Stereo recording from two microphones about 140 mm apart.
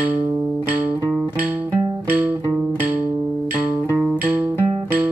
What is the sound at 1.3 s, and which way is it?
Music, 15° right (ahead or behind).